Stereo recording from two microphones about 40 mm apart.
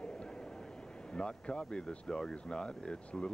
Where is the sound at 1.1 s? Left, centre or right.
Left.